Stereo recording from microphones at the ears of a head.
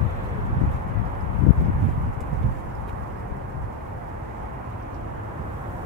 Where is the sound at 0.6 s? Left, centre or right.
Left.